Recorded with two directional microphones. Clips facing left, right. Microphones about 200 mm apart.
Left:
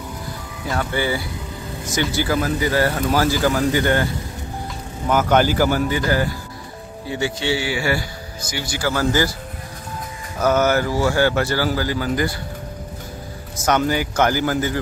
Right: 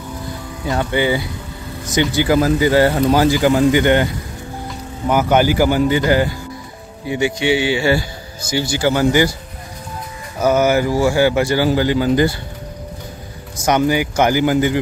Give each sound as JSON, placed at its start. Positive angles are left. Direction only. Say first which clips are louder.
{"t": 0.7, "sound": "speech", "louder": "right 5 dB", "side_deg": -20}
{"t": 10.4, "sound": "speech", "louder": "right 3 dB", "side_deg": -10}
{"t": 13.7, "sound": "speech", "louder": "right 4 dB", "side_deg": -15}